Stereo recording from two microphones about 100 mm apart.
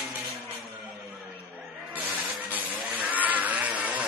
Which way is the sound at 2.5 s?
15° right (ahead or behind).